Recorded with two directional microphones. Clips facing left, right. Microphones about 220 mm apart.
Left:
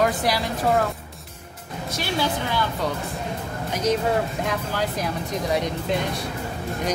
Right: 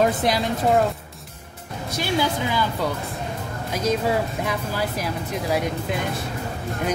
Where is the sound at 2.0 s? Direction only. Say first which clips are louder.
Right 2 dB; 10° right (ahead or behind).